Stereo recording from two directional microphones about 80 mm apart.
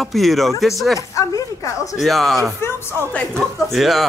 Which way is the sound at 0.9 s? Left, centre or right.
Left.